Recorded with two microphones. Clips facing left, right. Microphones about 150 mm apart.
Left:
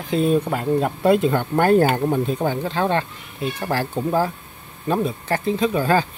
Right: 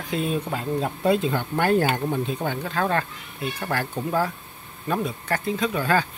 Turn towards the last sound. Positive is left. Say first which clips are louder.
# left 4 dB
turn(degrees=30)  # may be behind; listen again after turning